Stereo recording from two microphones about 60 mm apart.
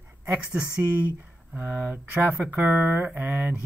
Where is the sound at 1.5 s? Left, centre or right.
Right.